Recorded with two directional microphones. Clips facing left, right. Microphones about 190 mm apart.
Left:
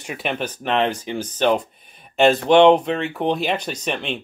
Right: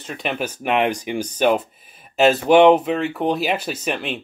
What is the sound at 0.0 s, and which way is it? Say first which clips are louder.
Speech: even; 10° left (ahead or behind).